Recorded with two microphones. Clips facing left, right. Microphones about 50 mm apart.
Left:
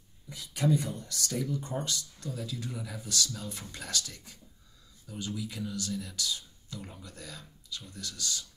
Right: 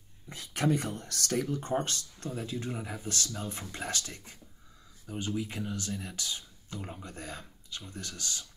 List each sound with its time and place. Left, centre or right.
0.3 s speech: right